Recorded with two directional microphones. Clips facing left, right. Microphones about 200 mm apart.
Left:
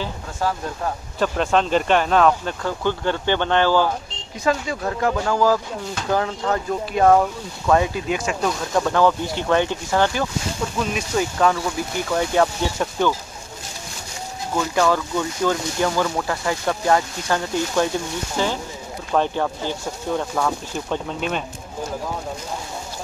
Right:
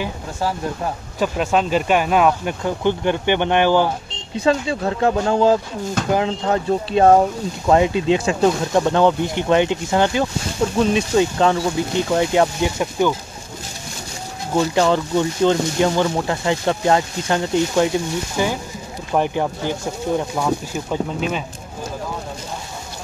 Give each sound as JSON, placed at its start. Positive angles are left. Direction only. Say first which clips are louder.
{"t": 1.2, "sound": "speech", "louder": "right 1 dB", "side_deg": -5}
{"t": 4.4, "sound": "speech", "louder": "right 4 dB", "side_deg": -30}
{"t": 10.8, "sound": "speech", "louder": "right 7 dB", "side_deg": -30}
{"t": 14.5, "sound": "speech", "louder": "right 3 dB", "side_deg": -25}